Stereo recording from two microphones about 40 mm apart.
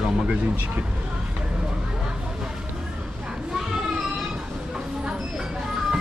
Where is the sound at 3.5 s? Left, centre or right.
Centre.